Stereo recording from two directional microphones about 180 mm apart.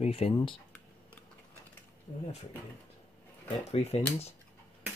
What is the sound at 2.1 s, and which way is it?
Speech, 25° left (ahead or behind).